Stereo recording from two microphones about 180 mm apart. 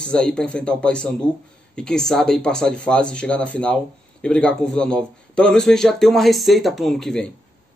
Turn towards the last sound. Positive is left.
turn(degrees=0)  # may be behind; listen again after turning